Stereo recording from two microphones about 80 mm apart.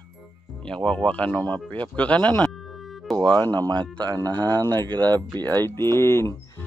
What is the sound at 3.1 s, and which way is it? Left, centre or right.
Speech, right.